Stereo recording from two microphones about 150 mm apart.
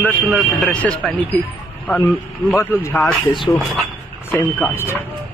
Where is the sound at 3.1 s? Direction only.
Centre (ahead or behind).